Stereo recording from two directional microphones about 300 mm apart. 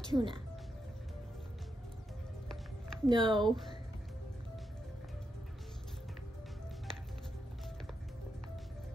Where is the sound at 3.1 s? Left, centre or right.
Centre.